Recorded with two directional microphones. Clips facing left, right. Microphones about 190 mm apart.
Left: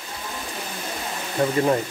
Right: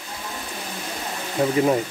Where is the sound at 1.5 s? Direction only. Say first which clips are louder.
Right 2 dB; 5° right (ahead or behind).